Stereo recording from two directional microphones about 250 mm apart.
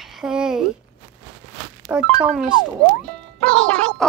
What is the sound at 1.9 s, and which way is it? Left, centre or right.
Speech, centre.